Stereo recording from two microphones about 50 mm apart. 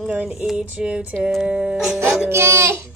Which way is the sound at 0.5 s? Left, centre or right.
Right.